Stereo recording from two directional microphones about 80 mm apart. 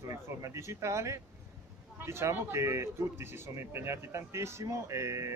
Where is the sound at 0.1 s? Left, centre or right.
Right.